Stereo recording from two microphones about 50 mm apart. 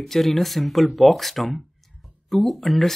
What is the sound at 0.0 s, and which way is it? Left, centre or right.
Speech, centre.